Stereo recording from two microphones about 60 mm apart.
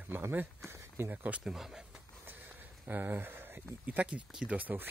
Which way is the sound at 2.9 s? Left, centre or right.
Right.